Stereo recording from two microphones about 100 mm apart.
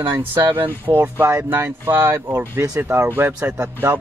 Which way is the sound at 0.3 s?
25° right (ahead or behind).